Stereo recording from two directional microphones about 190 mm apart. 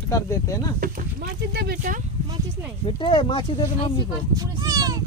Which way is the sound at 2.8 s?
25° left (ahead or behind).